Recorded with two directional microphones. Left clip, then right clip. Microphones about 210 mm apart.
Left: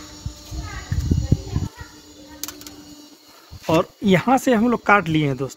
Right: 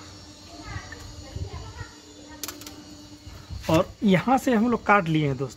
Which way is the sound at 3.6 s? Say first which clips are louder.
Left 3 dB; 55° left (ahead or behind).